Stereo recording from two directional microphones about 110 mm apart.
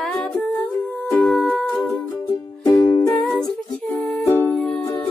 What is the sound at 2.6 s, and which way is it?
Music, 35° left (ahead or behind).